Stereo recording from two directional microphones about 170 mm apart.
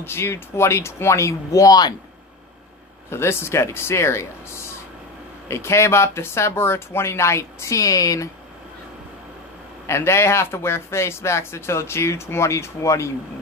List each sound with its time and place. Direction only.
0.0 s speech: 15° left (ahead or behind)
3.1 s speech: 15° left (ahead or behind)
9.8 s speech: 15° left (ahead or behind)